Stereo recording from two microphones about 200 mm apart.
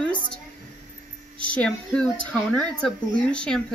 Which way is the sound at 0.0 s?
5° left (ahead or behind).